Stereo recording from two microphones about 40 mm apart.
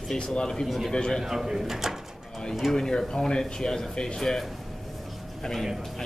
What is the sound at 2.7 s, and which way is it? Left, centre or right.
Speech, centre.